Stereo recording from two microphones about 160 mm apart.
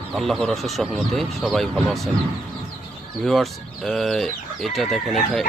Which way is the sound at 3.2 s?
Centre (ahead or behind).